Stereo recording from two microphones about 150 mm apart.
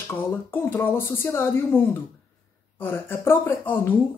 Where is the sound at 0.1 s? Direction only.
15° left (ahead or behind).